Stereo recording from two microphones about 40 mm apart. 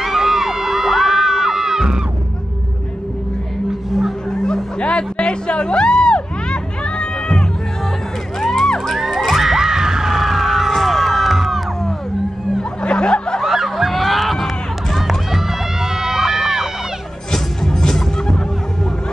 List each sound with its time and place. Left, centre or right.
0.0 s crowd: centre
4.3 s music: centre
4.7 s a sound: left
8.4 s music: centre
8.6 s children shouting: centre
8.9 s children shouting: centre
9.3 s music: centre
10.7 s crowd: centre
12.8 s snicker: left
13.5 s run: centre
17.3 s music: centre